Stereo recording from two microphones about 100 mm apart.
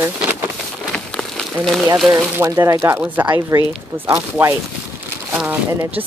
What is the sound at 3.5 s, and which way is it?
Speech, 40° right (ahead or behind).